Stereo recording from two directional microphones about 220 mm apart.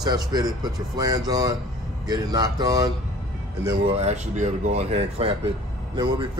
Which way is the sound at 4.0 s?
30° right (ahead or behind).